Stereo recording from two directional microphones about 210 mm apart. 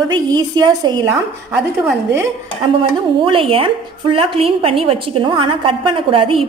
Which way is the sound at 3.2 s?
25° right (ahead or behind).